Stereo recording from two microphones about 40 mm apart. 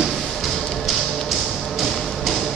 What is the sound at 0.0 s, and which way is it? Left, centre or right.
Music, centre.